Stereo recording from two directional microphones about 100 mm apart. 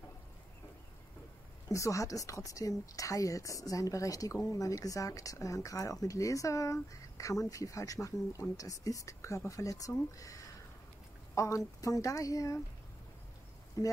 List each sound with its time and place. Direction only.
1.7 s speech: 30° left (ahead or behind)
13.8 s speech: 35° left (ahead or behind)